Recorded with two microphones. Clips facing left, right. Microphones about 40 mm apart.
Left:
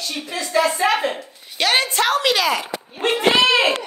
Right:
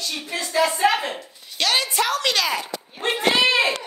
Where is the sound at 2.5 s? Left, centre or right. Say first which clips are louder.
Left 3 dB; left.